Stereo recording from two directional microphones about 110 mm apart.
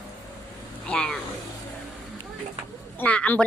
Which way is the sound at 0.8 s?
10° left (ahead or behind).